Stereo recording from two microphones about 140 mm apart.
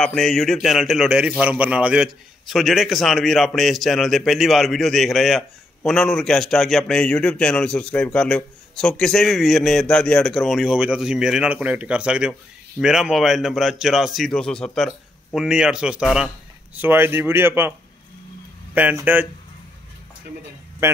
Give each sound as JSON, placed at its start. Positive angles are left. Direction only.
{"t": 0.0, "sound": "a man's voice", "side_deg": 5}
{"t": 15.3, "sound": "a man's voice", "side_deg": -5}
{"t": 16.7, "sound": "speech", "side_deg": -15}
{"t": 18.8, "sound": "speech", "side_deg": -10}